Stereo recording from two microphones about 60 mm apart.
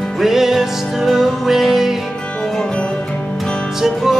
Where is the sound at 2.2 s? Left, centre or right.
Centre.